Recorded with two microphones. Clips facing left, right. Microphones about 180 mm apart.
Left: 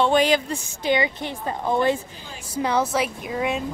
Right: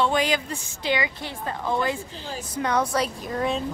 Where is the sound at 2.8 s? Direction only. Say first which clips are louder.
Left 1 dB; 5° left (ahead or behind).